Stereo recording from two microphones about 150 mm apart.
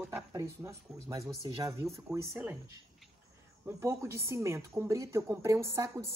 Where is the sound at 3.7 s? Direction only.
15° right (ahead or behind).